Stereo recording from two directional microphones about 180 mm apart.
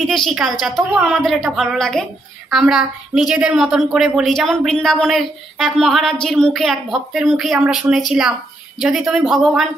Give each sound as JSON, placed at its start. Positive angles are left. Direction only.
{"t": 0.0, "sound": "a woman's voice", "side_deg": 0}